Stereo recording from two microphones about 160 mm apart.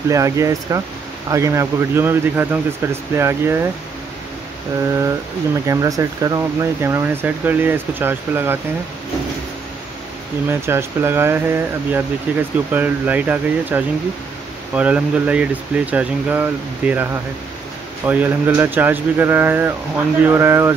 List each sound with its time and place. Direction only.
0.1 s speech: 20° right (ahead or behind)
5.7 s speech: 20° right (ahead or behind)
10.5 s speech: 15° right (ahead or behind)